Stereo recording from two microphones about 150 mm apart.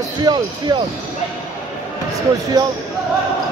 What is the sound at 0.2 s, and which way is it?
Speech, 25° right (ahead or behind).